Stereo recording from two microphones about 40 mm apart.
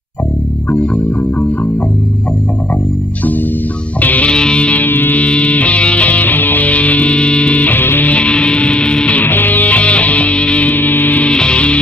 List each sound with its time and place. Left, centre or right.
4.0 s music: left
4.3 s music: left
4.8 s music: left
5.1 s music: left
6.2 s music: left
7.6 s music: left
8.0 s music: left
9.2 s music: left
10.7 s music: left
11.2 s music: left